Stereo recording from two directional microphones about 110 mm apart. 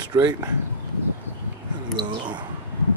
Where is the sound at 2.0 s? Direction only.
45° right (ahead or behind).